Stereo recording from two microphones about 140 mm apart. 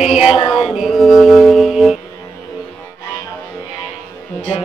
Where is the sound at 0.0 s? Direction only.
5° right (ahead or behind).